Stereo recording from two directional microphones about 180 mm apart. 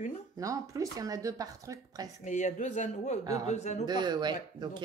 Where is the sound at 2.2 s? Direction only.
40° left (ahead or behind).